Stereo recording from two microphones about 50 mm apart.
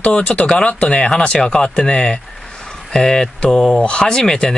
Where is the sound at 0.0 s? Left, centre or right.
Left.